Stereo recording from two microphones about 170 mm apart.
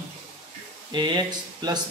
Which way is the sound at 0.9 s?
25° right (ahead or behind).